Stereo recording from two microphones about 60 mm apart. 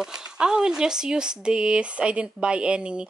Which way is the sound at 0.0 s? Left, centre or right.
Centre.